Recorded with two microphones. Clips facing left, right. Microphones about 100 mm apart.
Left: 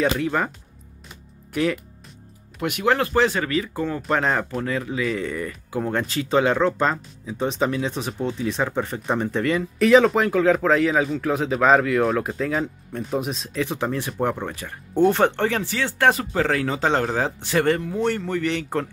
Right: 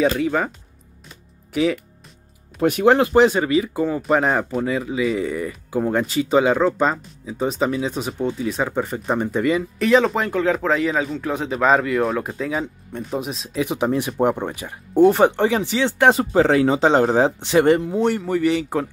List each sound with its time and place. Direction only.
0.2 s speech: 5° right (ahead or behind)
1.5 s speech: centre (ahead or behind)
2.6 s speech: 35° right (ahead or behind)
2.9 s speech: 20° right (ahead or behind); by 13.6 s centre (ahead or behind)
13.6 s speech: 15° right (ahead or behind)